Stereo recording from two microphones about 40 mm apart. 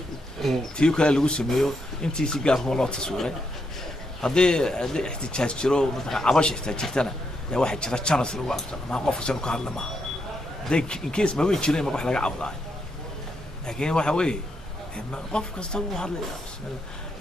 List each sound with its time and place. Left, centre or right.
0.4 s speech: centre
0.7 s speech: left
13.7 s speech: centre